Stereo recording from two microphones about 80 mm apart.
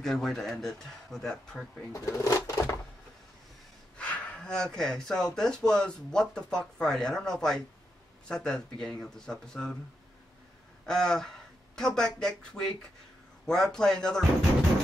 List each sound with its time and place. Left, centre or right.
0.0 s speech: centre
1.9 s speech: left
4.0 s speech: centre
10.9 s speech: centre